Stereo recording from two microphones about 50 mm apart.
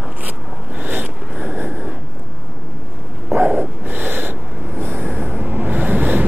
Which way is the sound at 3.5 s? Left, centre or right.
Right.